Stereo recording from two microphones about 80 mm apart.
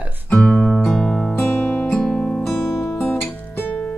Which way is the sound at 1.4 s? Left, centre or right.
Left.